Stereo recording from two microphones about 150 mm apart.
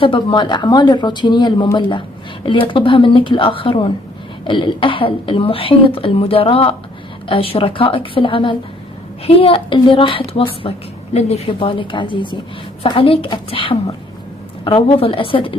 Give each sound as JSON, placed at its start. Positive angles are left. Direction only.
{"t": 0.0, "sound": "a woman's voice", "side_deg": 30}